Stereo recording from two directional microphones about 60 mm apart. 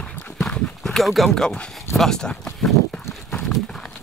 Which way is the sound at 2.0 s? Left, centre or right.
Centre.